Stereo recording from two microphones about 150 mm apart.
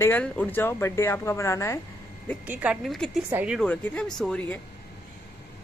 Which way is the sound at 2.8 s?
Centre (ahead or behind).